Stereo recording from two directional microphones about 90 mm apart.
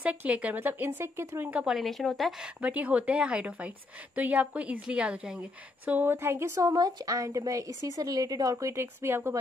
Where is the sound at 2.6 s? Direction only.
15° right (ahead or behind).